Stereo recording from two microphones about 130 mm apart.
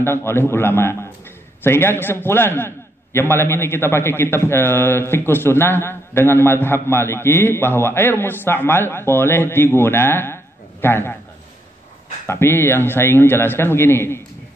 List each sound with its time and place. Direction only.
0.0 s a man's voice: 20° left (ahead or behind)
12.3 s a man's voice: 20° left (ahead or behind)